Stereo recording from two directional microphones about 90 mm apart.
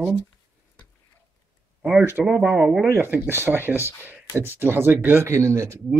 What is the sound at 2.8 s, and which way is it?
A man's voice, 25° right (ahead or behind).